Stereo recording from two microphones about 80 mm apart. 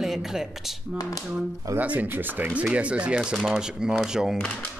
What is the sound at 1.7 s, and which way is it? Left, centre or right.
Speech, right.